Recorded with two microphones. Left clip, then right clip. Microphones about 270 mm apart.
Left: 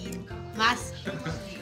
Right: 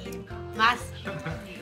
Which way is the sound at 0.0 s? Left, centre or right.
Centre.